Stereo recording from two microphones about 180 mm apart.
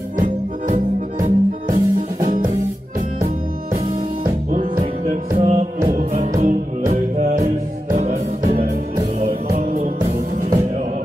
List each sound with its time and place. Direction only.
1.2 s music: 40° right (ahead or behind)
3.7 s music: 45° right (ahead or behind)